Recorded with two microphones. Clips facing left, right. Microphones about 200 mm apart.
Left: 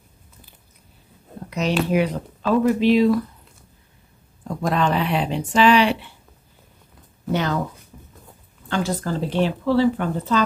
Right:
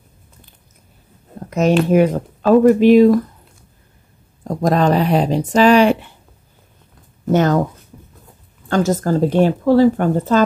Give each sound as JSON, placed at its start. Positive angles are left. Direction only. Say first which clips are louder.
{"t": 1.9, "sound": "speech", "louder": "right 7 dB", "side_deg": -45}
{"t": 4.5, "sound": "speech", "louder": "right 6 dB", "side_deg": -40}
{"t": 7.2, "sound": "speech", "louder": "right 8 dB", "side_deg": -45}
{"t": 8.6, "sound": "speech", "louder": "right 7 dB", "side_deg": -45}